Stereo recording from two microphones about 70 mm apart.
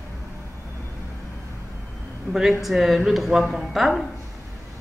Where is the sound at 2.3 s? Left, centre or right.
Centre.